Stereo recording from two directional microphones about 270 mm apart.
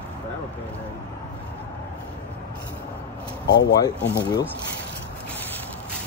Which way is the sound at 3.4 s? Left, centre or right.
Centre.